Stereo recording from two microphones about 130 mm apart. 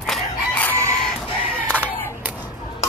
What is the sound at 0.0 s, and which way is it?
Crowing, 10° left (ahead or behind).